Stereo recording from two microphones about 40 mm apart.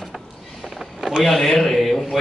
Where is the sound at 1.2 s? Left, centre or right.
Centre.